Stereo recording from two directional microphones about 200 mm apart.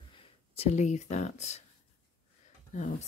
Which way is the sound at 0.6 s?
35° left (ahead or behind).